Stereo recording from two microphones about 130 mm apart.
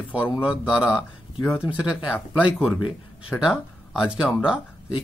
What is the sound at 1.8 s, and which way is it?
Speech, 5° right (ahead or behind).